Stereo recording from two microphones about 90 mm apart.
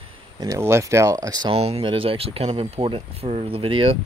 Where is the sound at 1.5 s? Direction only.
85° right.